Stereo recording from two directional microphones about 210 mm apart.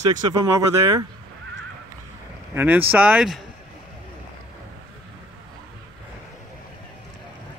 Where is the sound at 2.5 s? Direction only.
10° right (ahead or behind).